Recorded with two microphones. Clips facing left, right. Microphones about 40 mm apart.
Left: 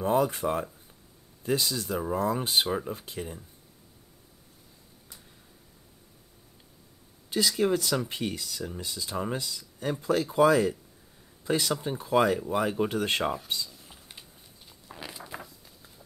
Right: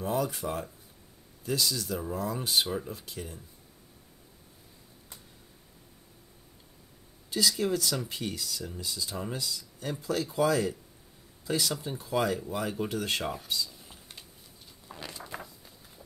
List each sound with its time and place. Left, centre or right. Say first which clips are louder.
0.0 s speech: left 5 dB; left
7.2 s speech: left 3 dB; left
11.7 s speech: left 5 dB; centre
13.7 s typing: even; centre
14.9 s a sound: even; centre